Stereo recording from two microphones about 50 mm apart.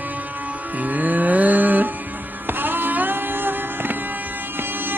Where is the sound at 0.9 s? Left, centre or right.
Right.